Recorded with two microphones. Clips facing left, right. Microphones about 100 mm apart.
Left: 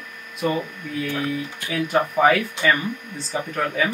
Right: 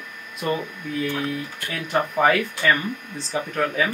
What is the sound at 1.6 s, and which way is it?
Speech, 5° left (ahead or behind).